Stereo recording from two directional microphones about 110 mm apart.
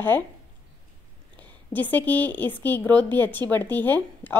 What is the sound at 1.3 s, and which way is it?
A woman's voice, 15° left (ahead or behind).